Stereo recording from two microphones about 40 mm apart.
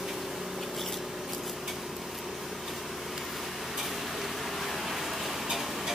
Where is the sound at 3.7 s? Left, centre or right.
Centre.